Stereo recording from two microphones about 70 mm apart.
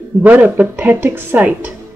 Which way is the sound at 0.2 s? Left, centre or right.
Right.